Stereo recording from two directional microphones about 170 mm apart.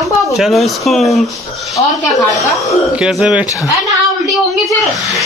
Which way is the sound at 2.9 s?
5° right (ahead or behind).